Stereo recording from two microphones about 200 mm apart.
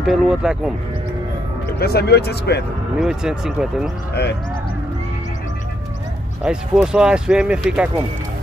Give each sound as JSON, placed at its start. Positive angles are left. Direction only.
{"t": 0.0, "sound": "speech", "side_deg": 0}
{"t": 1.8, "sound": "speech", "side_deg": 50}
{"t": 3.0, "sound": "speech", "side_deg": -5}
{"t": 4.1, "sound": "speech", "side_deg": 55}
{"t": 6.4, "sound": "speech", "side_deg": -5}